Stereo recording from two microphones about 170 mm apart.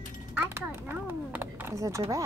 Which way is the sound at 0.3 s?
10° right (ahead or behind).